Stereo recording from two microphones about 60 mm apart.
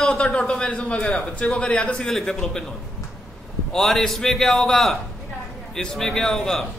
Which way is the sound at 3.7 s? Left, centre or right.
Centre.